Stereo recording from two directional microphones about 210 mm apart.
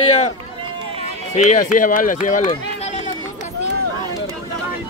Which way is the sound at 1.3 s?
35° left (ahead or behind).